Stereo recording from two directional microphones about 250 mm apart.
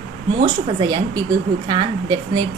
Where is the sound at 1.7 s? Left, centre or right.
Centre.